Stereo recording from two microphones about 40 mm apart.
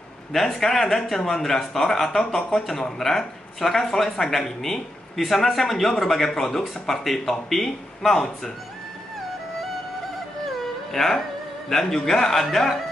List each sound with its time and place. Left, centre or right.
0.3 s speech: centre
10.4 s music: centre
11.7 s speech: centre